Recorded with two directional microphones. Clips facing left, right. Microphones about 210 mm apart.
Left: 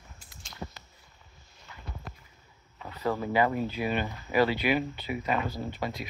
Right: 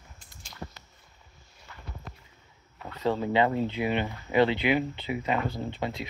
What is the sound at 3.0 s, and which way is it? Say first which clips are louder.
Speech: right 2 dB; 20° right (ahead or behind).